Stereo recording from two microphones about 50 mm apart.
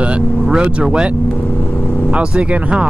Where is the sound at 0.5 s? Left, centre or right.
Right.